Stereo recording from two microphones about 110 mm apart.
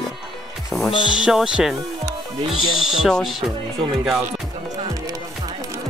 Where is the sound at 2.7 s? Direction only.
5° right (ahead or behind).